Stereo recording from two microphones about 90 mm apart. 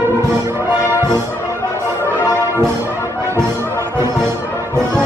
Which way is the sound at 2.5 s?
30° right (ahead or behind).